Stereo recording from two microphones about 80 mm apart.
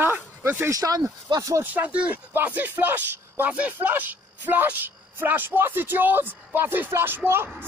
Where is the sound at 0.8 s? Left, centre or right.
Right.